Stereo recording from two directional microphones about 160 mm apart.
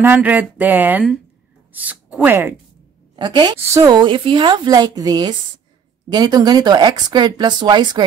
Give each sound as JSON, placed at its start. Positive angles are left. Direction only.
{"t": 0.0, "sound": "a sound", "side_deg": -10}
{"t": 1.7, "sound": "speech", "side_deg": -10}
{"t": 3.2, "sound": "a woman's voice", "side_deg": -30}